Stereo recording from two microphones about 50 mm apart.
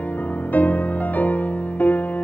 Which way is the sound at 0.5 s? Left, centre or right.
Left.